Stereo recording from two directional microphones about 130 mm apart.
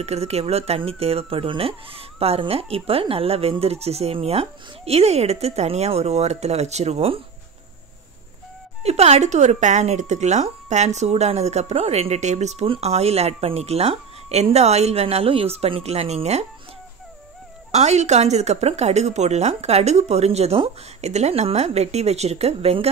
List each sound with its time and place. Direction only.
0.0 s speech: 55° right (ahead or behind)
8.8 s a woman's voice: 55° right (ahead or behind)
12.6 s speech: 50° right (ahead or behind)
17.6 s a woman's voice: 60° right (ahead or behind)